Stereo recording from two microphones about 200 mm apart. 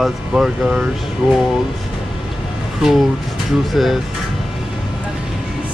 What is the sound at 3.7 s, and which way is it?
Speech, centre (ahead or behind).